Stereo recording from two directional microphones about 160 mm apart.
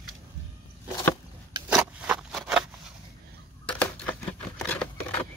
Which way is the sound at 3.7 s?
10° left (ahead or behind).